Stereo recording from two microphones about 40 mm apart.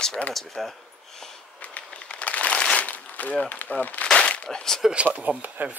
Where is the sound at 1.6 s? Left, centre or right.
Left.